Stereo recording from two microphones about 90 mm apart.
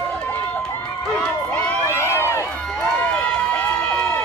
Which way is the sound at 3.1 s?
10° left (ahead or behind).